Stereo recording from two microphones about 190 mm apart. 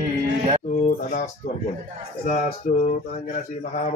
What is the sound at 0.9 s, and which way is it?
Speech, 40° left (ahead or behind).